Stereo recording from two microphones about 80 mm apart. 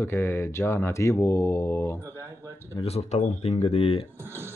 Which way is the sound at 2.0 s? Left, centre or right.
Right.